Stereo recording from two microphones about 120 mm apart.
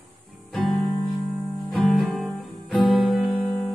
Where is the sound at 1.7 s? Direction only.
Centre (ahead or behind).